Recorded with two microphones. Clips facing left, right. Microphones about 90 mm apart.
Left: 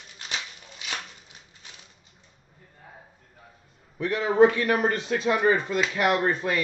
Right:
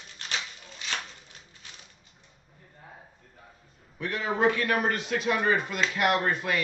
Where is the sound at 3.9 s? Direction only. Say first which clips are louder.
Left 9 dB; 30° left (ahead or behind).